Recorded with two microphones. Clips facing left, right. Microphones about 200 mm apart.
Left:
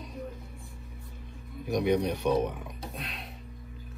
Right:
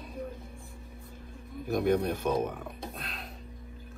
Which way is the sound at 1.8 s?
45° right (ahead or behind).